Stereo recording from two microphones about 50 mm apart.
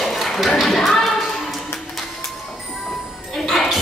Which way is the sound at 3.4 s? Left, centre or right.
Centre.